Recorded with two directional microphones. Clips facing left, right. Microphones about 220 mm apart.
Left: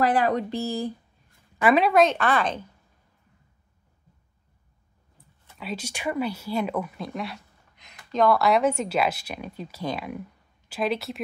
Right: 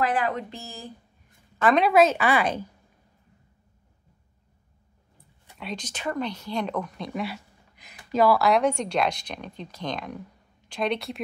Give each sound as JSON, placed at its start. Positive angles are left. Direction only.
{"t": 0.0, "sound": "speech", "side_deg": 35}
{"t": 1.6, "sound": "speech", "side_deg": 10}
{"t": 1.9, "sound": "speech", "side_deg": -5}
{"t": 5.6, "sound": "speech", "side_deg": 5}